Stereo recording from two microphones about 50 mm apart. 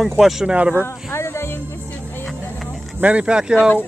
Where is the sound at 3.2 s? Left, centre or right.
Centre.